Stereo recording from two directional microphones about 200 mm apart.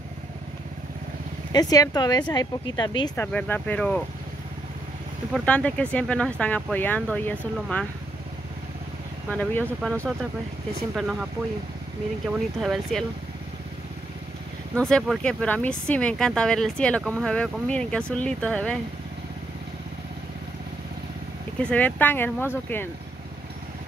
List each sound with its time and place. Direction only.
1.5 s speech: 20° left (ahead or behind)
3.2 s speech: 10° left (ahead or behind)
5.3 s speech: 5° left (ahead or behind)
9.3 s speech: 10° left (ahead or behind)
12.3 s speech: centre (ahead or behind)
14.8 s speech: 5° left (ahead or behind)
21.6 s speech: 10° left (ahead or behind)